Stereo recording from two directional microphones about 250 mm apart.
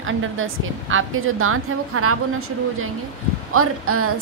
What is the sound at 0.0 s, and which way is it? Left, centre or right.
A woman's voice, right.